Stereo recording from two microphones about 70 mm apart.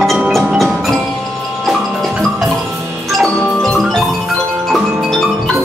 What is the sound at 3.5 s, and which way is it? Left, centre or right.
Music, centre.